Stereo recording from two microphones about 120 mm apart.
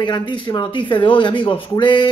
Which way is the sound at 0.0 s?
40° left (ahead or behind).